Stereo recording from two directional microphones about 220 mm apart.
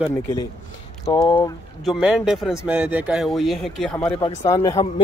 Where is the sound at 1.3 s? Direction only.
20° left (ahead or behind).